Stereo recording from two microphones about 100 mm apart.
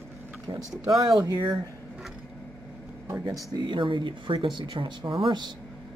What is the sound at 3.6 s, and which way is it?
Speech, 55° right (ahead or behind).